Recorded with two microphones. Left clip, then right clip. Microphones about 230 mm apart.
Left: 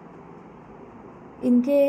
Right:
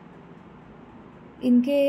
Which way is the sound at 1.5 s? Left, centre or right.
Centre.